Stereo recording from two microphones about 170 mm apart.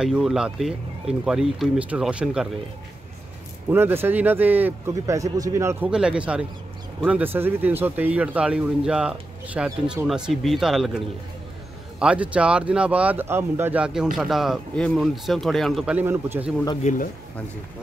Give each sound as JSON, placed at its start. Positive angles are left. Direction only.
{"t": 0.0, "sound": "speech", "side_deg": -5}
{"t": 3.7, "sound": "speech", "side_deg": -10}
{"t": 5.9, "sound": "speech", "side_deg": -5}
{"t": 16.8, "sound": "speech", "side_deg": 45}